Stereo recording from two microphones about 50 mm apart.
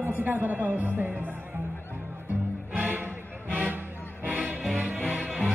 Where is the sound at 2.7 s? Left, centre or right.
Right.